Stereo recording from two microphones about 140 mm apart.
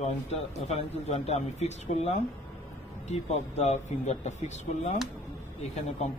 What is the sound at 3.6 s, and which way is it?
Speech, 55° left (ahead or behind).